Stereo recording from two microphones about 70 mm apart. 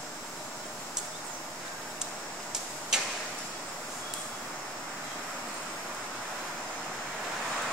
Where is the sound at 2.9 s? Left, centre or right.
Centre.